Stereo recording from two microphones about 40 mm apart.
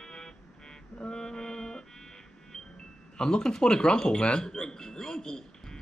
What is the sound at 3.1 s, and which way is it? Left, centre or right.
A man's voice, centre.